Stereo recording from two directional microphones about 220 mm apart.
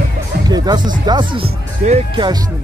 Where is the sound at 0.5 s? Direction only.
20° right (ahead or behind).